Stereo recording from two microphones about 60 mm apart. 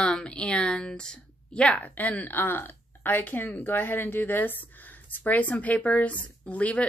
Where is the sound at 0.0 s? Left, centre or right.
Centre.